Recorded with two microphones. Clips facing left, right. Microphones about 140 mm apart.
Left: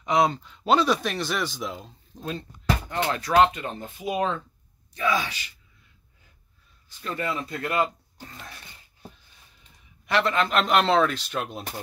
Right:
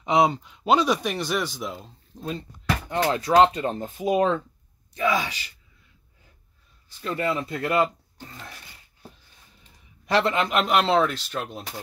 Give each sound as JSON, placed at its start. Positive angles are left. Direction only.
{"t": 0.0, "sound": "speech", "side_deg": -20}
{"t": 3.1, "sound": "speech", "side_deg": -25}
{"t": 4.9, "sound": "speech", "side_deg": -25}
{"t": 7.0, "sound": "speech", "side_deg": -25}
{"t": 10.0, "sound": "a man's voice", "side_deg": -30}
{"t": 10.3, "sound": "speech", "side_deg": -15}